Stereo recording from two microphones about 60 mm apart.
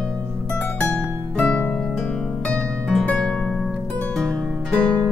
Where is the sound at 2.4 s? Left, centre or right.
Centre.